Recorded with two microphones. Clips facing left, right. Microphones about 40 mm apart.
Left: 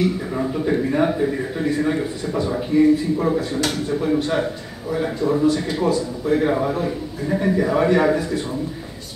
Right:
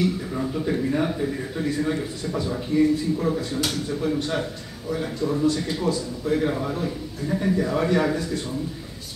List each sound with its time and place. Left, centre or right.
0.4 s a man's voice: centre